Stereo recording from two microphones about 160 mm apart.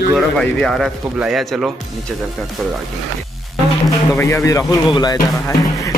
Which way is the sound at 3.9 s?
15° left (ahead or behind).